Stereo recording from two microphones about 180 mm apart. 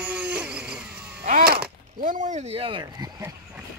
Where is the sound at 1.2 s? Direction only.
55° right (ahead or behind); by 3.1 s 30° right (ahead or behind).